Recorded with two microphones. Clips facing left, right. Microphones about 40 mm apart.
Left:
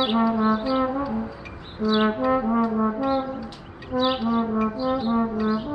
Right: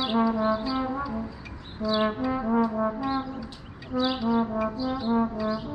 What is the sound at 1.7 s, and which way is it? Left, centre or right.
Brass instrument, left.